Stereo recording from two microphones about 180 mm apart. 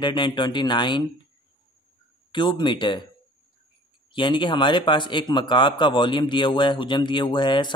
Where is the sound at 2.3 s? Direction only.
25° left (ahead or behind).